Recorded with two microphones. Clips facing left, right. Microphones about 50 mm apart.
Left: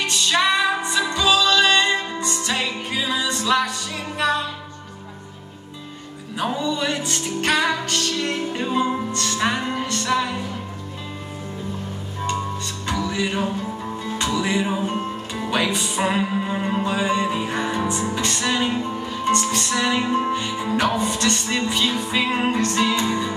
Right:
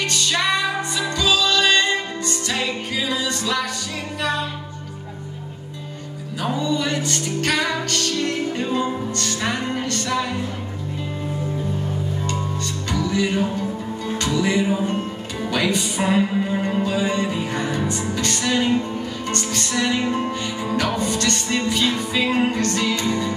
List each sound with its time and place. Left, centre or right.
0.0 s music: centre
6.4 s music: centre
12.9 s music: centre